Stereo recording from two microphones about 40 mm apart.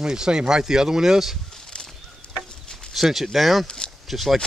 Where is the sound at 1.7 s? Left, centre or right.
Left.